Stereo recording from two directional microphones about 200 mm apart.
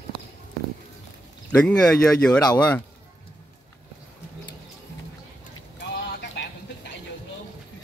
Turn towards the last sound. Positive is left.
turn(degrees=60)  # may be behind; listen again after turning